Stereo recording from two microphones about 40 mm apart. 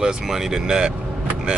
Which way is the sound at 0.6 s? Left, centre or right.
Right.